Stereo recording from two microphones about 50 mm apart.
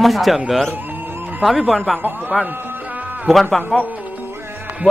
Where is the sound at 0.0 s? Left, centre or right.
Centre.